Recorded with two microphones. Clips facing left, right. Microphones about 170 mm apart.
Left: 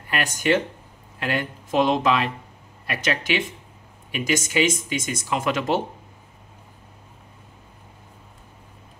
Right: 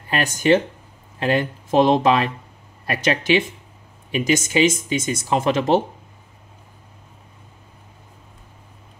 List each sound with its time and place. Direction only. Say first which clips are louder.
0.1 s speech: right 5 dB; 30° right (ahead or behind)